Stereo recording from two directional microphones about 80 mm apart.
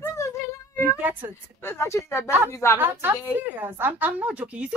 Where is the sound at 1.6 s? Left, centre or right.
Left.